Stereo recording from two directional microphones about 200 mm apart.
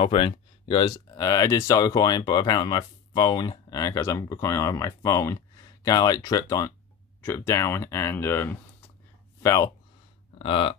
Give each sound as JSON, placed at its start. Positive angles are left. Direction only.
{"t": 0.0, "sound": "speech", "side_deg": 25}
{"t": 10.4, "sound": "speech", "side_deg": 25}